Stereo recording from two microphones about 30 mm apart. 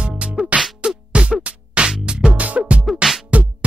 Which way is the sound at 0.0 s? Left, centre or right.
Right.